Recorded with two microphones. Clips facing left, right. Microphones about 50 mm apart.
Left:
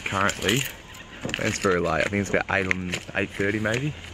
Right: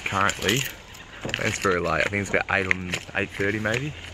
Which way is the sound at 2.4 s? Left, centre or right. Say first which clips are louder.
Right 1 dB; centre.